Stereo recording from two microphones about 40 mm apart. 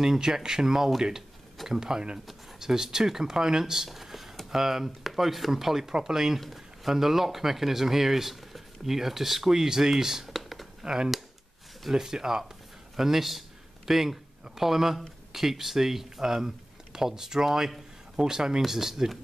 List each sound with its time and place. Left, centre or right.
0.0 s speech: centre
10.8 s speech: centre